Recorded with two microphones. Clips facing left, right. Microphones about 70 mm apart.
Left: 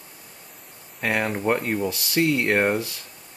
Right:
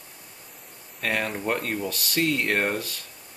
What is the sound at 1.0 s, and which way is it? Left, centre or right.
Speech, centre.